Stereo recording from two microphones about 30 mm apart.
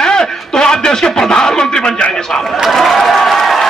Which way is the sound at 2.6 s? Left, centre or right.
Centre.